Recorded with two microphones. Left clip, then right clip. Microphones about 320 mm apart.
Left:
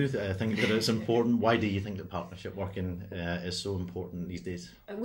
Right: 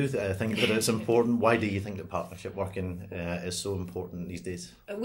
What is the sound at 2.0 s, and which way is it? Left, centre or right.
Speech, right.